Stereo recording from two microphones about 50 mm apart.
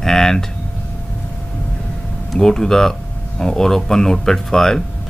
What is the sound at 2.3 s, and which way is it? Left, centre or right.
Speech, centre.